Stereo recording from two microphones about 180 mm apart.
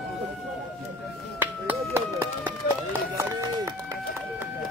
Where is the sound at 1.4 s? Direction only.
10° right (ahead or behind).